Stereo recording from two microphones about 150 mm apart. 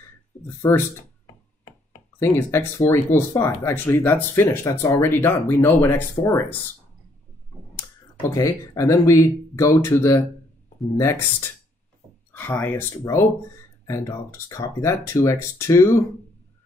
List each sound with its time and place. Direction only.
0.6 s speech: 15° left (ahead or behind)
2.1 s speech: 20° left (ahead or behind)
7.7 s speech: 20° left (ahead or behind)